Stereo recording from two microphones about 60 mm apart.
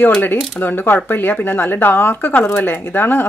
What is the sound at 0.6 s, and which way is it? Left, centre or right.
Speech, left.